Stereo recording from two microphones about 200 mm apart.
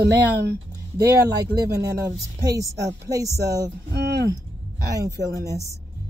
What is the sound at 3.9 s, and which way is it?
Speech, 55° right (ahead or behind).